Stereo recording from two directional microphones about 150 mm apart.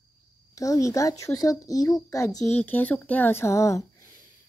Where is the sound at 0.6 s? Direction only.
20° left (ahead or behind).